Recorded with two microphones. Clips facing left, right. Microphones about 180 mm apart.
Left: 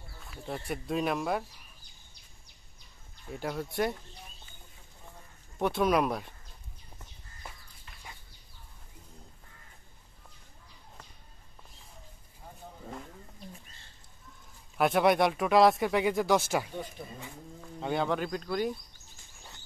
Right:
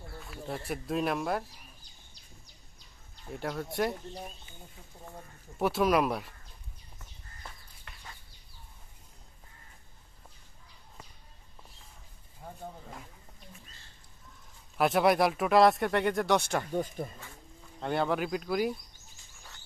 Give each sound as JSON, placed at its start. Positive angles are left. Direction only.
{"t": 0.2, "sound": "speech", "side_deg": 0}
{"t": 3.3, "sound": "speech", "side_deg": 0}
{"t": 5.6, "sound": "speech", "side_deg": 0}
{"t": 7.9, "sound": "bird", "side_deg": -70}
{"t": 14.8, "sound": "speech", "side_deg": 0}
{"t": 17.0, "sound": "speech", "side_deg": -50}
{"t": 17.7, "sound": "speech", "side_deg": 0}